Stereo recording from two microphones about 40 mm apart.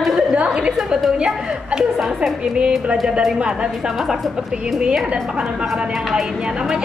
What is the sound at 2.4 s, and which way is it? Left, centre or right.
Speech, right.